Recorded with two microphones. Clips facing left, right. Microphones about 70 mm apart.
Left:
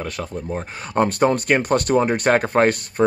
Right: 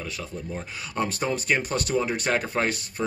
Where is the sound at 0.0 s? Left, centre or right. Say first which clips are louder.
Left 6 dB; left.